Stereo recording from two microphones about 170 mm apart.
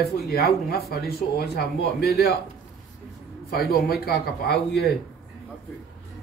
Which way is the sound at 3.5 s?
65° left (ahead or behind).